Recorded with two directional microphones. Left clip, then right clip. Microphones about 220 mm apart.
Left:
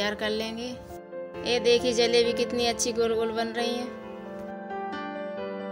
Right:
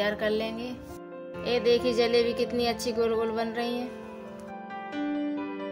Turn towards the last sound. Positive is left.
turn(degrees=40)  # may be behind; listen again after turning